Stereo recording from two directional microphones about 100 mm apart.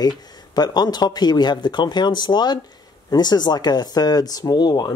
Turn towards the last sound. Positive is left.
turn(degrees=40)  # may be behind; listen again after turning